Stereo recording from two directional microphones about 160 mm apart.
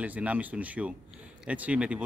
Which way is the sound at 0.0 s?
10° right (ahead or behind).